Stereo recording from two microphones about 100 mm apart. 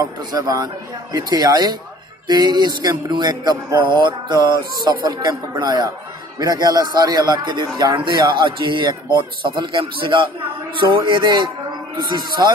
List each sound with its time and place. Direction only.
0.0 s a man's voice: 40° right (ahead or behind)